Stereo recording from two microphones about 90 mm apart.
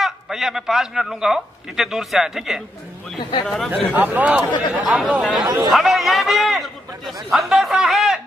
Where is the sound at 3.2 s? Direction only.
65° left (ahead or behind).